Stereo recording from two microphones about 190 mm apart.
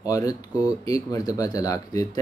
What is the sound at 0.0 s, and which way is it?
Speech, 20° left (ahead or behind).